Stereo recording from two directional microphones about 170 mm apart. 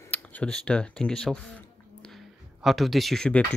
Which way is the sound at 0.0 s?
10° left (ahead or behind).